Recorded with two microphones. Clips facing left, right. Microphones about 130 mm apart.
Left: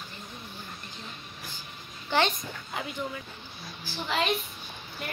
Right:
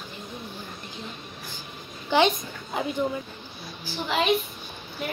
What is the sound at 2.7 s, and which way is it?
Speech, 25° right (ahead or behind).